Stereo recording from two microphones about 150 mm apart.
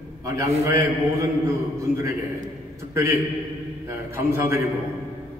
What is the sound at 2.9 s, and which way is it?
Speech, 15° right (ahead or behind).